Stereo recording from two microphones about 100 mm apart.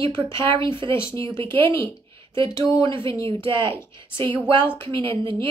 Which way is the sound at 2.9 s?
60° right (ahead or behind).